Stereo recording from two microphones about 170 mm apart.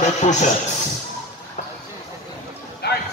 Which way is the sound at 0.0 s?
45° left (ahead or behind).